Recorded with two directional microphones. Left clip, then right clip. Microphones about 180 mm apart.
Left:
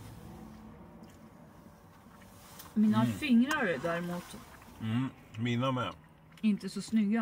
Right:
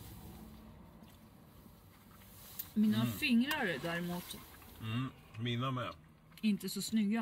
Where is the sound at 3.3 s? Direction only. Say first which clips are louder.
Left 7 dB; 25° right (ahead or behind).